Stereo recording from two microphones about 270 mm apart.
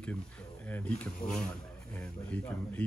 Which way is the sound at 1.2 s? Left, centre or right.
Centre.